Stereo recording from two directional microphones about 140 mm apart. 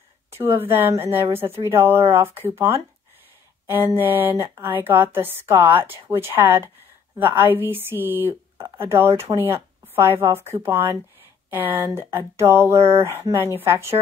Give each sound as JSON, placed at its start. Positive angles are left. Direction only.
{"t": 0.4, "sound": "speech", "side_deg": -20}